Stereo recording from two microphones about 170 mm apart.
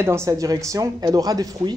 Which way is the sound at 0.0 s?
15° right (ahead or behind).